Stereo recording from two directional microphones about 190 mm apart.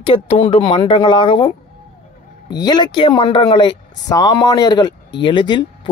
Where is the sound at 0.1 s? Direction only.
25° left (ahead or behind).